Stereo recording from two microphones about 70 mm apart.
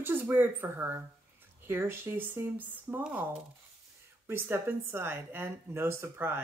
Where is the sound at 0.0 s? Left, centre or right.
Right.